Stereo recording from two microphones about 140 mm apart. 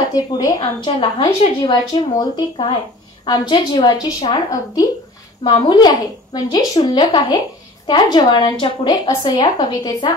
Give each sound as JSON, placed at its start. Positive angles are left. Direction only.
{"t": 0.1, "sound": "a woman's voice", "side_deg": 25}
{"t": 5.4, "sound": "a woman's voice", "side_deg": 30}